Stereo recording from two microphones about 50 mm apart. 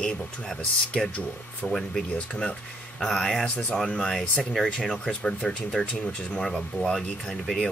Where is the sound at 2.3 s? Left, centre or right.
Left.